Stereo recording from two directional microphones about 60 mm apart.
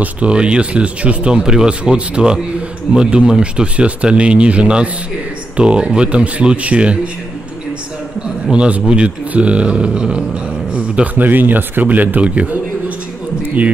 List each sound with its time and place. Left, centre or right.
0.0 s speech: centre
8.5 s speech: centre
11.1 s speech: right